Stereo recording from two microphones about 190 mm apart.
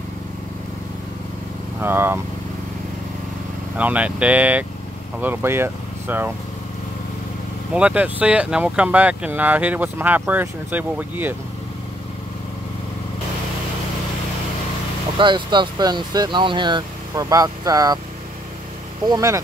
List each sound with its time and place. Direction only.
1.8 s speech: 10° right (ahead or behind)
3.7 s speech: 5° right (ahead or behind)
7.7 s speech: 5° right (ahead or behind)
15.1 s speech: 25° right (ahead or behind)
19.0 s speech: 15° right (ahead or behind)